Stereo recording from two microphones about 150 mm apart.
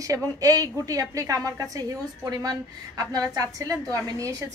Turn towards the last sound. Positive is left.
turn(degrees=-25)  # may be behind; listen again after turning